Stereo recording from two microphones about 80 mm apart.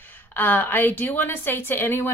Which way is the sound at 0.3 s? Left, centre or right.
Left.